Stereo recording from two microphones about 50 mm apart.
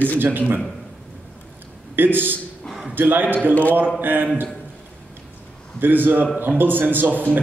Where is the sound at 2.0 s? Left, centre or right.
Right.